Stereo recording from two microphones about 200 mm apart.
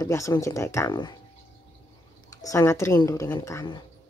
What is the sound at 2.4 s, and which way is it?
A woman's voice, 15° left (ahead or behind).